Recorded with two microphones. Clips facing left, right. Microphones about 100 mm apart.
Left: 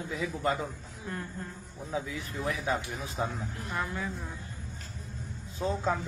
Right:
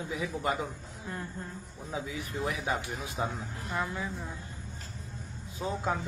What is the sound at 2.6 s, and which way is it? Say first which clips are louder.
A man's voice: left 1 dB; 15° right (ahead or behind).